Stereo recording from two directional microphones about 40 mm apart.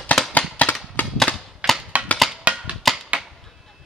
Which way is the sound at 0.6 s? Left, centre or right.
Left.